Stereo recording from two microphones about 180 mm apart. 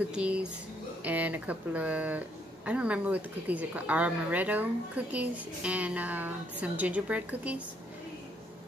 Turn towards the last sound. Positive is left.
turn(degrees=-10)  # may be behind; listen again after turning